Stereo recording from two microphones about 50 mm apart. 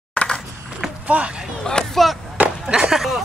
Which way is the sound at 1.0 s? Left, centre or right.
Right.